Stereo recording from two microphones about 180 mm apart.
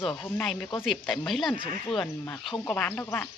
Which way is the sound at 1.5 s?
30° left (ahead or behind).